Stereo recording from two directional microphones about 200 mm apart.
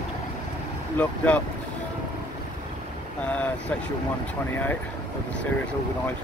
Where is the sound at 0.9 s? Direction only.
5° left (ahead or behind).